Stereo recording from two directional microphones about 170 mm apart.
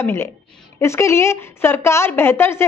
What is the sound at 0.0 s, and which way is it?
A woman's voice, 15° left (ahead or behind).